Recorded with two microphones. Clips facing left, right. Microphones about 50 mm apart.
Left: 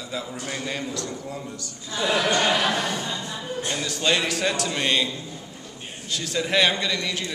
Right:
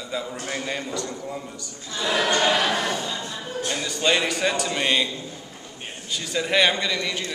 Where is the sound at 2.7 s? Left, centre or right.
Centre.